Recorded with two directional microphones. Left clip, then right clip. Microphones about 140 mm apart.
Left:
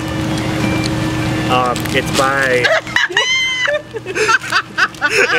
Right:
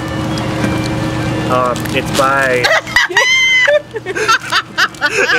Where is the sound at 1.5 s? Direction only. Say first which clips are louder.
Right 1 dB; 5° left (ahead or behind).